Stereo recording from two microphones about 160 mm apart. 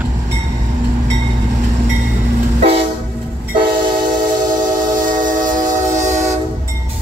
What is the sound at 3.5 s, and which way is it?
Train, 60° right (ahead or behind).